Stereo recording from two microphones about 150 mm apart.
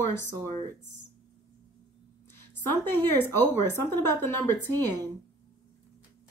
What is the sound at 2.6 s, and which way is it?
Speech, 15° left (ahead or behind).